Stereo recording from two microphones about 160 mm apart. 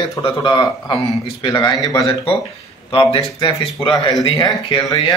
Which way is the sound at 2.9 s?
35° left (ahead or behind).